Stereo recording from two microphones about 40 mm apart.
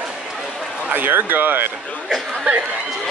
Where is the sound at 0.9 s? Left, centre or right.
Right.